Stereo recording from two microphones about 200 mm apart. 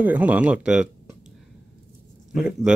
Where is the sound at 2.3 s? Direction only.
Centre (ahead or behind).